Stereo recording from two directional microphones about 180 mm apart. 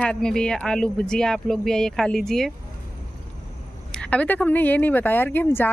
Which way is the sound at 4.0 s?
5° left (ahead or behind).